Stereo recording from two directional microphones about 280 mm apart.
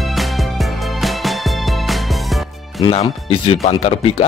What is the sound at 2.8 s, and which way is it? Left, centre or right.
Speech, left.